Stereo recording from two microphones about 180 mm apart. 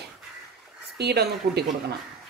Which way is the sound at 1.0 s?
65° right (ahead or behind).